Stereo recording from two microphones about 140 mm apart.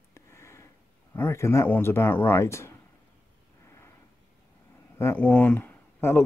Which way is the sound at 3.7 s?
20° left (ahead or behind).